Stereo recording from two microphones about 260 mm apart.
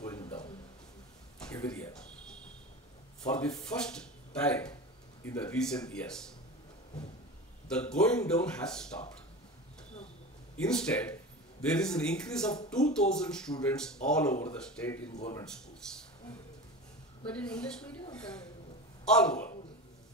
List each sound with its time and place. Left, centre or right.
0.0 s a sound: centre
1.5 s a sound: centre
3.3 s speech: centre
7.6 s speech: centre
10.6 s speech: centre
14.3 s speech: left
14.6 s speech: centre
17.3 s speech: centre